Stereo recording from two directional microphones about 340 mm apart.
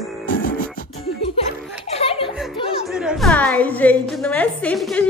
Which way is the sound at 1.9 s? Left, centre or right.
Centre.